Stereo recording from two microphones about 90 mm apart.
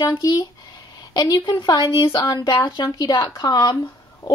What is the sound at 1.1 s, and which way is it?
A woman's voice, 50° left (ahead or behind).